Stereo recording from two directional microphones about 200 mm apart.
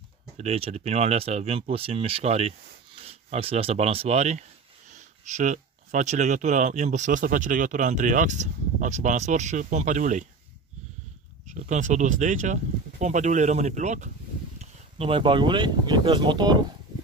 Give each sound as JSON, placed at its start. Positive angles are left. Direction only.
{"t": 0.4, "sound": "speech", "side_deg": -30}
{"t": 11.4, "sound": "speech", "side_deg": -35}